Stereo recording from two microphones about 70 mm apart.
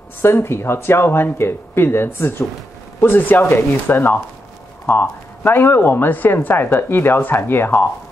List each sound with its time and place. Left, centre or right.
0.2 s speech: left